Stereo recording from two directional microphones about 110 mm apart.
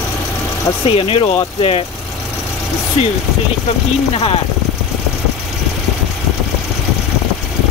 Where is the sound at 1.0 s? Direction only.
60° left (ahead or behind).